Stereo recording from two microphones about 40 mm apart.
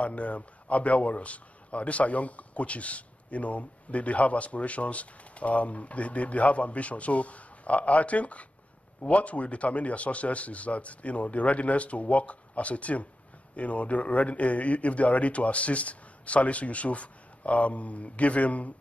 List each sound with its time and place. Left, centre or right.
0.0 s a man's voice: left